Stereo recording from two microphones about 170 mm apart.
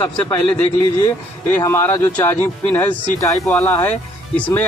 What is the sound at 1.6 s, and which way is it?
Speech, 15° left (ahead or behind).